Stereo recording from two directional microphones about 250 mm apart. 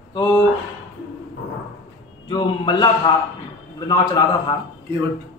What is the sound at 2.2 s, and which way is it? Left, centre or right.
A man's voice, centre.